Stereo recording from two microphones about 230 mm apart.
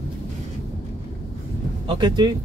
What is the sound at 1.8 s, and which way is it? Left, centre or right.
Speech, centre.